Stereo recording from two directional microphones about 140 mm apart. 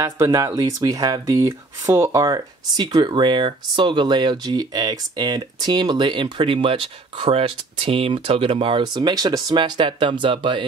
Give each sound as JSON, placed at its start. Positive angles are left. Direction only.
{"t": 0.0, "sound": "speech", "side_deg": -20}